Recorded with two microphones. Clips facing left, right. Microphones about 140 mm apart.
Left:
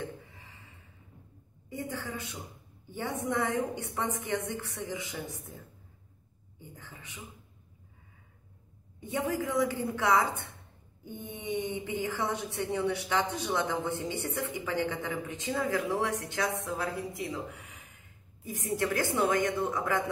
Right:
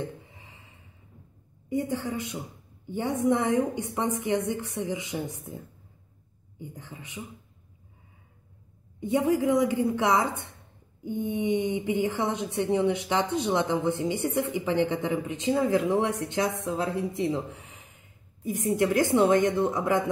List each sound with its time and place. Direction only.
0.2 s a sound: 20° right (ahead or behind)
1.7 s a woman's voice: 20° right (ahead or behind)
6.6 s a woman's voice: 20° right (ahead or behind)
9.0 s a woman's voice: 20° right (ahead or behind)